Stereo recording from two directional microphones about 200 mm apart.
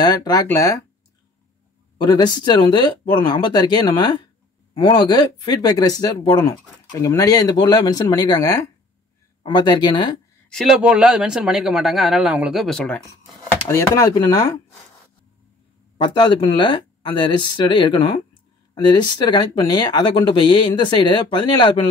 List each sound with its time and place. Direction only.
0.0 s speech: 20° left (ahead or behind)
2.0 s speech: 20° left (ahead or behind)
10.5 s speech: centre (ahead or behind); by 14.5 s 15° left (ahead or behind)
16.0 s speech: 25° left (ahead or behind)